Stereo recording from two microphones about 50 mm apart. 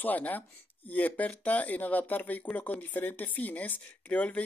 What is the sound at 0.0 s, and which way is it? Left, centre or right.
Speech, left.